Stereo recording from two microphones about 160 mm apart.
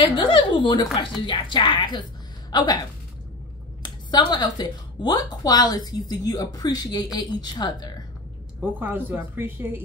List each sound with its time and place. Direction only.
0.1 s speech: 30° left (ahead or behind)
3.8 s speech: 25° left (ahead or behind)
8.5 s a woman's voice: 10° right (ahead or behind)